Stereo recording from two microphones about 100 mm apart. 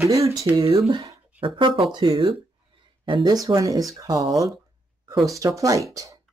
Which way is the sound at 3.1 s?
55° right (ahead or behind).